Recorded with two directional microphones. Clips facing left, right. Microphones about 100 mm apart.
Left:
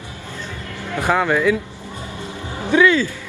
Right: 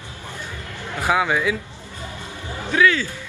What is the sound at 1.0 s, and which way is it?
Speech, 5° right (ahead or behind).